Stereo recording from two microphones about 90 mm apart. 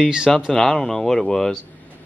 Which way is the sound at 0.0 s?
5° right (ahead or behind).